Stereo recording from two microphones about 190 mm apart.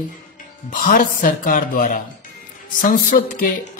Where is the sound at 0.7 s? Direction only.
45° left (ahead or behind).